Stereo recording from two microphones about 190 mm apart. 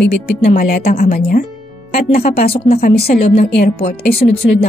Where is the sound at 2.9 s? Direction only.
55° left (ahead or behind).